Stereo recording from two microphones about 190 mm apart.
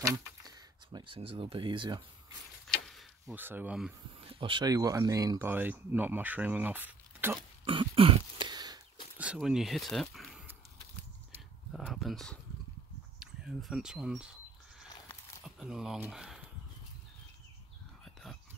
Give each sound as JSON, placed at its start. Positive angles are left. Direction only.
{"t": 0.0, "sound": "speech", "side_deg": -20}
{"t": 2.7, "sound": "a sound", "side_deg": 0}
{"t": 4.2, "sound": "speech", "side_deg": -30}
{"t": 7.6, "sound": "throat clearing", "side_deg": -25}
{"t": 9.2, "sound": "speech", "side_deg": -5}
{"t": 11.7, "sound": "a sound", "side_deg": 0}
{"t": 13.2, "sound": "speech", "side_deg": 0}
{"t": 15.4, "sound": "speech", "side_deg": -5}
{"t": 18.0, "sound": "a sound", "side_deg": 0}